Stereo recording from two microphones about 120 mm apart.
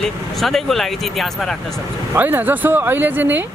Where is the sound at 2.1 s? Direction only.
15° right (ahead or behind).